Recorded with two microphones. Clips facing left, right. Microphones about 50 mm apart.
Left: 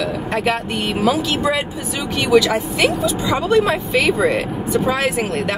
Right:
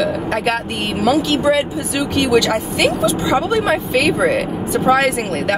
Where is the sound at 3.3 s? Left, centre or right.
Centre.